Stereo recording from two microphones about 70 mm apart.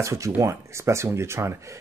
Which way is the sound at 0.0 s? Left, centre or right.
Right.